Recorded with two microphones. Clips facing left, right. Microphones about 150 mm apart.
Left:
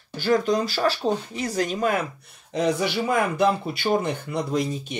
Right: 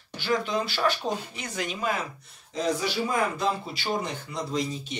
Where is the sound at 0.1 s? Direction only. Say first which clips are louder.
Left 6 dB; 45° left (ahead or behind).